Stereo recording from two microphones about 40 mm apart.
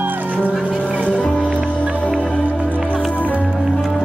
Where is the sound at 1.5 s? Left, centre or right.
Right.